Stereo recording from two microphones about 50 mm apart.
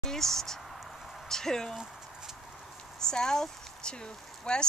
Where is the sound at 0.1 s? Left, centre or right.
Centre.